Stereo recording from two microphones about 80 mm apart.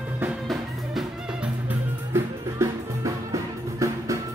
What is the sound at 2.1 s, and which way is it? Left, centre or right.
Music, right.